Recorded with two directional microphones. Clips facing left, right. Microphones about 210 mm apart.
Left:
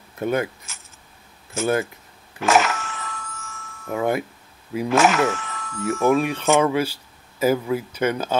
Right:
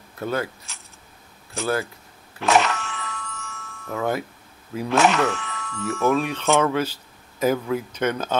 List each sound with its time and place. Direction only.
0.2 s speech: 20° left (ahead or behind)
0.7 s a sound: centre (ahead or behind)
2.4 s speech: centre (ahead or behind)
2.8 s glockenspiel: 45° left (ahead or behind)
3.9 s speech: 15° left (ahead or behind)
4.7 s speech: centre (ahead or behind)
5.2 s speech: 45° left (ahead or behind)
6.0 s speech: 10° left (ahead or behind)